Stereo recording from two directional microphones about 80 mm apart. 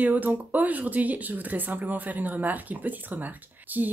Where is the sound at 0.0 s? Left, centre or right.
Right.